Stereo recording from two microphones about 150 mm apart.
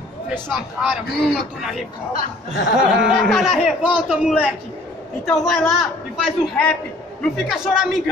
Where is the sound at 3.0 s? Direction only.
Centre (ahead or behind).